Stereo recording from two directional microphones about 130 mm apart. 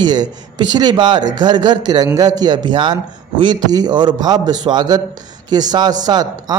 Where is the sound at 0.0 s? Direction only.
35° right (ahead or behind).